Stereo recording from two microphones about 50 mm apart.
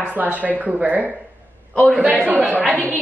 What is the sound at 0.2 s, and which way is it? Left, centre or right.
Speech, right.